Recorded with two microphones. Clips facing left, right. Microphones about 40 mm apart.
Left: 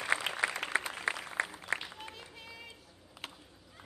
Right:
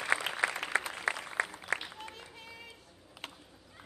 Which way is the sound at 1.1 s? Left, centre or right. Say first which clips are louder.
Right 1 dB; left.